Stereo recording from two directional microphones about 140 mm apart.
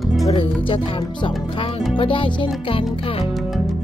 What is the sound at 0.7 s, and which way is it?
Music, 40° left (ahead or behind).